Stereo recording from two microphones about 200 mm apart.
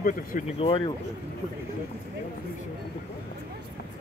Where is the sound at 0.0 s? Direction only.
40° left (ahead or behind).